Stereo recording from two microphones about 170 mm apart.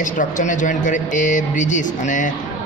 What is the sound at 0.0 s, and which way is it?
Speech, 50° left (ahead or behind).